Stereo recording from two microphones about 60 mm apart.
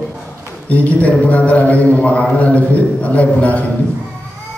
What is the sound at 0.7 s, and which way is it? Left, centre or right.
A man's voice, left.